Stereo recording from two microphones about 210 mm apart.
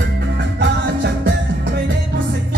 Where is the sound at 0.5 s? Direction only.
55° right (ahead or behind).